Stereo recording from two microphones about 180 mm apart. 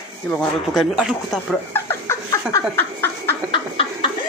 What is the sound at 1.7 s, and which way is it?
Laughter, 15° left (ahead or behind).